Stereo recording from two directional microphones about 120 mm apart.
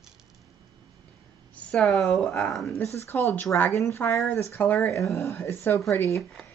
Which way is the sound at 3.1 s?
20° left (ahead or behind).